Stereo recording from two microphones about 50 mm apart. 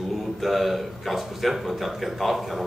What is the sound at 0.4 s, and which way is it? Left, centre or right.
A man's voice, centre.